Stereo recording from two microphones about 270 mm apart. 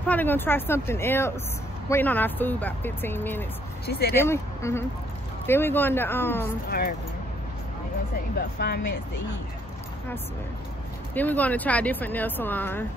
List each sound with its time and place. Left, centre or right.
0.0 s speech: centre
3.8 s speech: left
4.1 s speech: centre
8.4 s speech: left
11.1 s speech: centre